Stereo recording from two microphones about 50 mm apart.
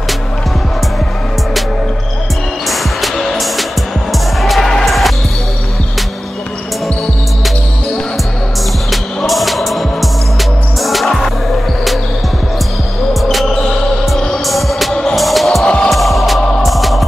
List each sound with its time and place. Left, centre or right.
2.7 s music: centre
8.9 s music: centre
13.1 s basketball bounce: centre
14.4 s music: centre
15.6 s music: left
15.9 s music: centre